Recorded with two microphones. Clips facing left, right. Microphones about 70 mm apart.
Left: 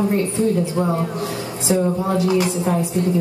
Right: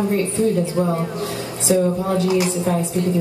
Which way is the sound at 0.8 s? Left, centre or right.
Centre.